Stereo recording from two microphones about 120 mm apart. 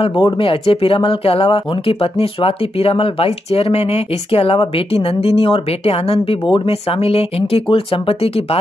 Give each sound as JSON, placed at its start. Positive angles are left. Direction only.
{"t": 0.0, "sound": "speech", "side_deg": 45}